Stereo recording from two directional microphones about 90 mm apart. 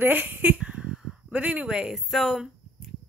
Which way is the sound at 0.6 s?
10° right (ahead or behind).